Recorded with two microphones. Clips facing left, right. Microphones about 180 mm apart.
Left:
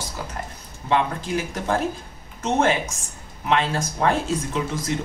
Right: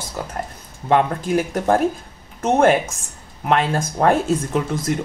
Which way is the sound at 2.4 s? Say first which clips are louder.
Right 6 dB; 55° right (ahead or behind).